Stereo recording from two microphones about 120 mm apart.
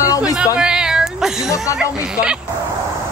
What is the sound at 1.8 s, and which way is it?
Speech, 10° right (ahead or behind).